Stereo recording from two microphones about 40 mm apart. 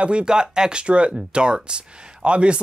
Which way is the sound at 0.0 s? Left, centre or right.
Right.